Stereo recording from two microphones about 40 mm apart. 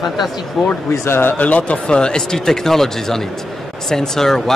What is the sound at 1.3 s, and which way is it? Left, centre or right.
Speech, left.